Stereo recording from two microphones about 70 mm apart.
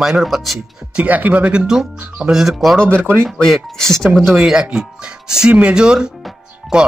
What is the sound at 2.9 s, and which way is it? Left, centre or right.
Speech, right.